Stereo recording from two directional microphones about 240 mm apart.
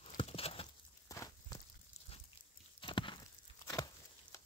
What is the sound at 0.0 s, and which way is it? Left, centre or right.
Clip-clop, left.